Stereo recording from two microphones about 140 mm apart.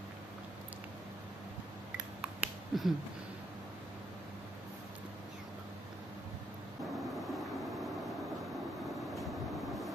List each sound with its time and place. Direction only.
2.2 s finger snapping: 5° right (ahead or behind)